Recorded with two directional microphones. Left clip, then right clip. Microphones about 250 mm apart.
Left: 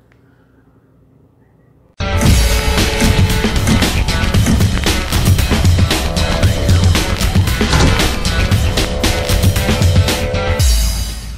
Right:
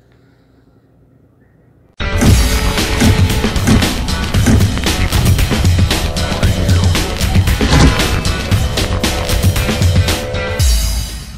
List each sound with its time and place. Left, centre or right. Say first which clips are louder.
2.0 s music: right 1 dB; centre